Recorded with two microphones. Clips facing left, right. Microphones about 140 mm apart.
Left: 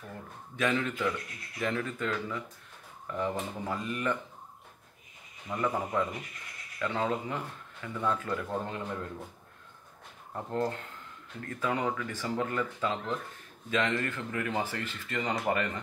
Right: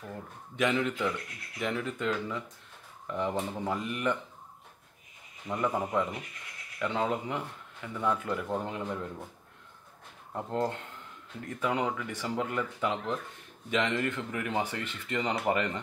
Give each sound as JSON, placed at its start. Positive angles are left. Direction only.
{"t": 0.6, "sound": "speech", "side_deg": -15}
{"t": 5.5, "sound": "speech", "side_deg": -15}
{"t": 10.3, "sound": "speech", "side_deg": -20}